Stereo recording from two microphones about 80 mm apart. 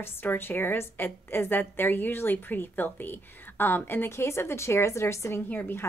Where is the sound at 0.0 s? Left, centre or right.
Left.